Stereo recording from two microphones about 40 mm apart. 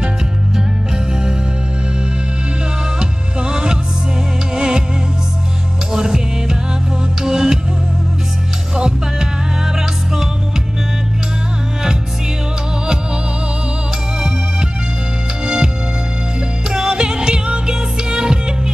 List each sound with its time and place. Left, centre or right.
3.0 s music: right
5.9 s music: centre
8.7 s music: centre
15.4 s music: centre
16.7 s music: centre